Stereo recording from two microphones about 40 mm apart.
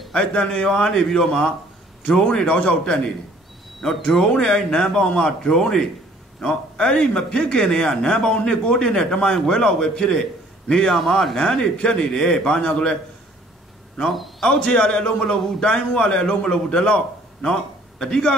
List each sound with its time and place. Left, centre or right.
0.1 s a man's voice: centre
4.3 s a man's voice: centre
11.0 s a man's voice: centre
14.0 s a man's voice: centre
14.4 s a man's voice: centre
15.2 s a man's voice: centre
15.6 s a man's voice: centre